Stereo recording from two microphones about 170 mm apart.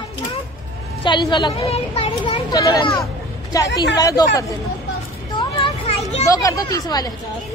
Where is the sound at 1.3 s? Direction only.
25° left (ahead or behind).